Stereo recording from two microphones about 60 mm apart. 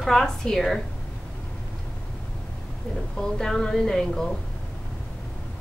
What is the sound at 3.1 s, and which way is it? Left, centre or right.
A woman's voice, centre.